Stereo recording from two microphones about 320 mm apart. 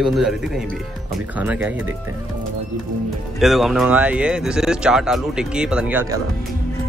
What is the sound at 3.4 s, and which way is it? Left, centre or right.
Speech, centre.